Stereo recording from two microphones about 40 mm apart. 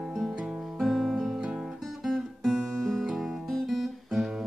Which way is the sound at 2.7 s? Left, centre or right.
Centre.